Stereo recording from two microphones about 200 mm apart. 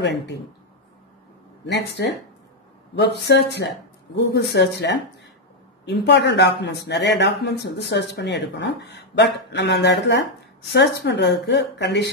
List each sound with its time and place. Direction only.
0.0 s speech: 60° left (ahead or behind)
3.0 s speech: 60° left (ahead or behind)